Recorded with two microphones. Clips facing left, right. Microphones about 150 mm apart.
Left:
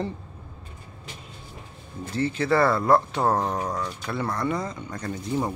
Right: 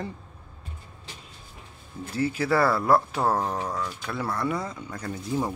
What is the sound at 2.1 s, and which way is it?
Speech, 5° right (ahead or behind).